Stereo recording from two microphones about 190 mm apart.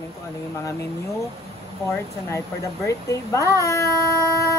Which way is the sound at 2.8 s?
15° left (ahead or behind).